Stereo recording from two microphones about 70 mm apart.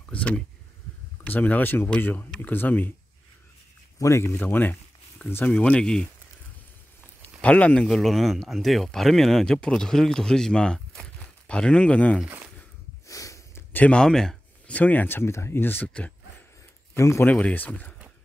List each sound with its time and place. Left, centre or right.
0.1 s a sound: centre
1.2 s speech: left
4.0 s speech: left
4.4 s speech: left
5.8 s speech: centre
7.4 s speech: centre
7.9 s speech: centre
13.0 s a sound: left
13.7 s speech: centre
14.7 s speech: left
16.9 s speech: left
17.2 s speech: centre